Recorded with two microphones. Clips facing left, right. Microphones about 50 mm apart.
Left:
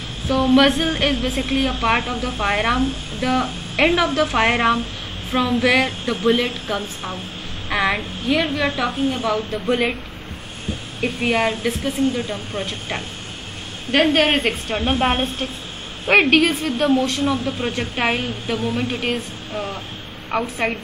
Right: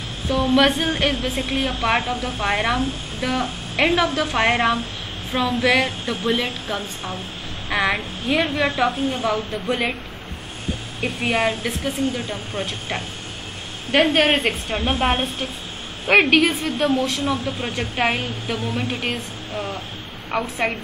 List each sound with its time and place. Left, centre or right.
0.3 s a woman's voice: centre
1.7 s a woman's voice: centre
7.7 s a woman's voice: centre
8.3 s a woman's voice: centre
11.0 s a woman's voice: centre
14.1 s a woman's voice: centre